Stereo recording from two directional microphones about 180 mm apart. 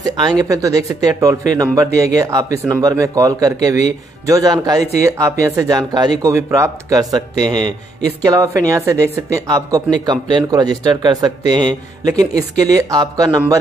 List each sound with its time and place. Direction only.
0.0 s speech: 20° right (ahead or behind)